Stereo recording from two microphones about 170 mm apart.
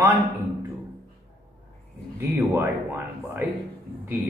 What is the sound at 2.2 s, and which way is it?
Speech, 15° right (ahead or behind).